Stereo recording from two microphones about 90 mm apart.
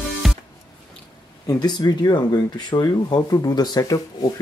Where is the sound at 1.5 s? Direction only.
50° left (ahead or behind).